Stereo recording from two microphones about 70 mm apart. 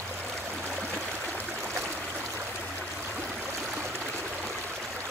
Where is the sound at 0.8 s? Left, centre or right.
Right.